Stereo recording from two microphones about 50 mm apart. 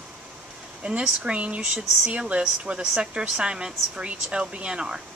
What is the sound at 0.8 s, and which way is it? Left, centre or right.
Speech, centre.